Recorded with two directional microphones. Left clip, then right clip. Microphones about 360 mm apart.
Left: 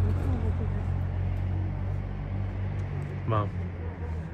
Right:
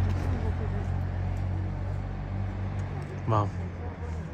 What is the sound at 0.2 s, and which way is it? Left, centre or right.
Vehicle, right.